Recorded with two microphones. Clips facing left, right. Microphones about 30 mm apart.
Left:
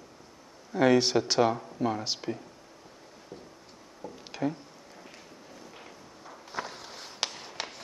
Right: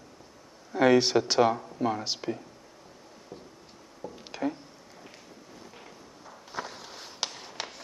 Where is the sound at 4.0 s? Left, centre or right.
Centre.